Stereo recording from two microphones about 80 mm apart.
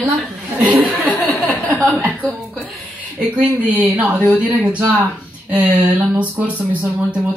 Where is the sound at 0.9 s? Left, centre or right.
Left.